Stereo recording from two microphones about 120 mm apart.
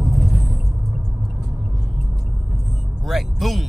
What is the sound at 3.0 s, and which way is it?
Vehicle, centre (ahead or behind).